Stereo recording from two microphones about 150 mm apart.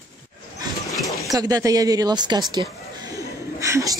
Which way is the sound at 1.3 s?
25° right (ahead or behind).